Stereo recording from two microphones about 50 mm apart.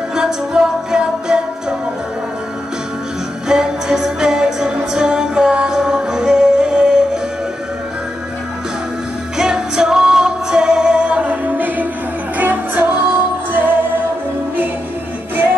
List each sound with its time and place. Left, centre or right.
0.1 s music: centre
3.4 s music: centre
9.4 s music: centre; by 13.7 s right